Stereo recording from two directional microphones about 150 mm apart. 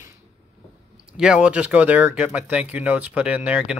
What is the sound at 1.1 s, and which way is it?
Speech, 5° right (ahead or behind).